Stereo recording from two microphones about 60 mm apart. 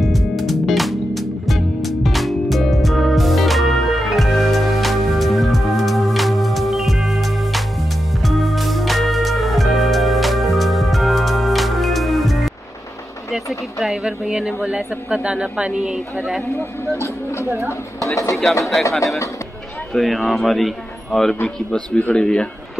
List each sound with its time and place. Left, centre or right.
0.0 s music: centre
13.3 s speech: centre
17.0 s speech: left
18.6 s speech: centre
19.9 s a man's voice: centre
21.9 s speech: left
22.2 s speech: centre